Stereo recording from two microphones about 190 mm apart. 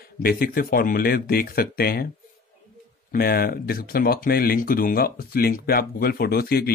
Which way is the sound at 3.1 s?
50° left (ahead or behind).